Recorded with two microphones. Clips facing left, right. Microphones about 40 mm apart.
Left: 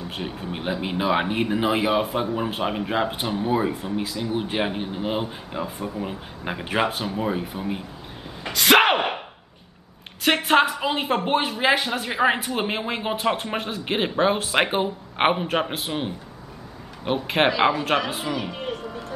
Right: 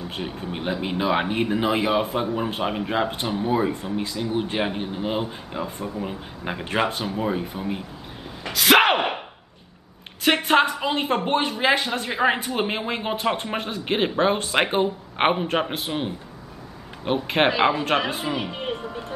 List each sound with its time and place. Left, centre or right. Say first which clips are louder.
0.1 s speech: even; centre
8.5 s bellow: even; centre
10.2 s speech: even; centre
18.3 s a sound: right 1 dB; right